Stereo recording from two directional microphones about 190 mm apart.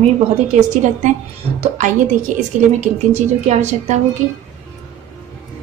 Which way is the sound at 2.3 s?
40° right (ahead or behind).